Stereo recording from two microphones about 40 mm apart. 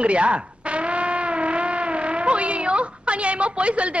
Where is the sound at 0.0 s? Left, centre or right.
Right.